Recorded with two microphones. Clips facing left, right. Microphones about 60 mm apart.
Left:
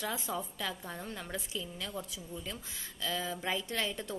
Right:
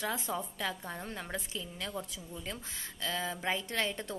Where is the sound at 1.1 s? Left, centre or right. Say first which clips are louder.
Even; right.